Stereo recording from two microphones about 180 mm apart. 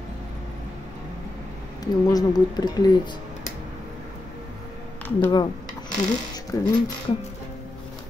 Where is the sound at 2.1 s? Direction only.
20° left (ahead or behind).